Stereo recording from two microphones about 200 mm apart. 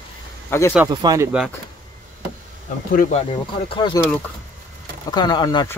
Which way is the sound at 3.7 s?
25° left (ahead or behind).